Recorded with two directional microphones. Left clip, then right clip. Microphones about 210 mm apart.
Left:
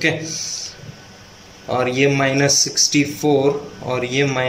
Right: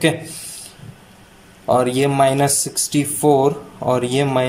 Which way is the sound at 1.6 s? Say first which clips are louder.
Right 1 dB; 20° right (ahead or behind).